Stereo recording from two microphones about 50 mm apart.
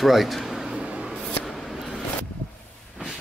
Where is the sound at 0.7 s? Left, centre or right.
Right.